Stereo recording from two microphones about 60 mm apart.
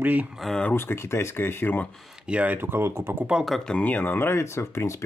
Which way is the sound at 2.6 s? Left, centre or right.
Right.